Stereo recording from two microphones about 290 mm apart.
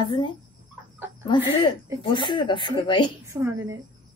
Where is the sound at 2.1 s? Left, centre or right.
Centre.